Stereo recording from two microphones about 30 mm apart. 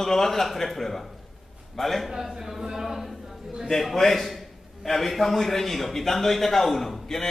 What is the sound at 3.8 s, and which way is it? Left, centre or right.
A man's voice, centre.